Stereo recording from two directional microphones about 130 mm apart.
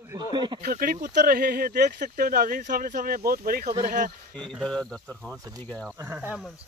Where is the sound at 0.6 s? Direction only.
90° right.